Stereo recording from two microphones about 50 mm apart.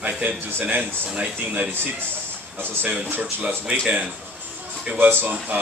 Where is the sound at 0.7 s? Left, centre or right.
Right.